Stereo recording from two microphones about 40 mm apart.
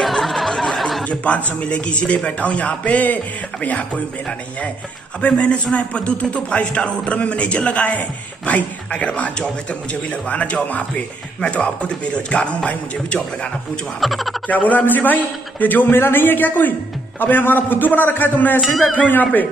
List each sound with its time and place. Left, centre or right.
0.0 s a sound: centre
1.0 s a man's voice: left
3.6 s a man's voice: left
5.2 s a man's voice: left
14.0 s speech: centre
14.5 s a man's voice: left